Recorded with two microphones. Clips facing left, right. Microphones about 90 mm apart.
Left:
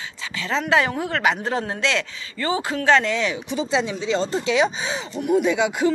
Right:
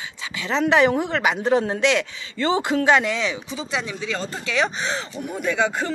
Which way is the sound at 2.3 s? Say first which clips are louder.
Right 3 dB; 35° right (ahead or behind).